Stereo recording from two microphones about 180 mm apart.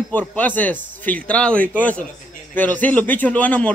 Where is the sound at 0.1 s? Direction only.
10° left (ahead or behind).